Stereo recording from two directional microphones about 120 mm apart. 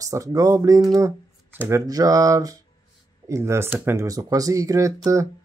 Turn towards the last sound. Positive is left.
turn(degrees=-25)  # may be behind; listen again after turning